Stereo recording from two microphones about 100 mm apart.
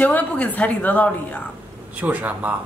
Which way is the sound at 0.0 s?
15° left (ahead or behind).